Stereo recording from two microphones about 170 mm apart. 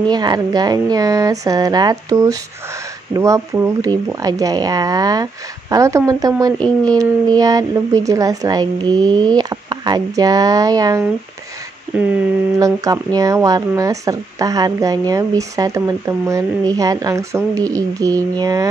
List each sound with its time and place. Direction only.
0.1 s speech: 25° right (ahead or behind)
6.6 s speech: 5° left (ahead or behind)
7.3 s speech: 20° right (ahead or behind)
12.5 s speech: 20° right (ahead or behind)